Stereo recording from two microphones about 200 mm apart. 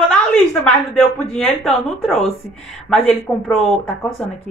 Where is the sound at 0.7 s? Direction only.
5° left (ahead or behind).